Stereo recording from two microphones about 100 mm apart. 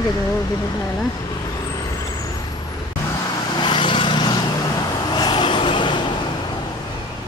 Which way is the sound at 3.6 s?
50° left (ahead or behind).